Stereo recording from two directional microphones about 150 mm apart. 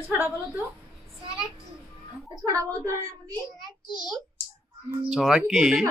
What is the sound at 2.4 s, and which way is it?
Speech, 25° right (ahead or behind).